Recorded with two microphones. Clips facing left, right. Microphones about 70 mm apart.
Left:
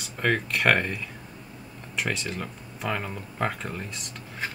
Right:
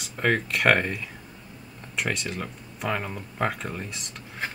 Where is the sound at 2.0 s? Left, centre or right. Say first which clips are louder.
Right 1 dB; centre.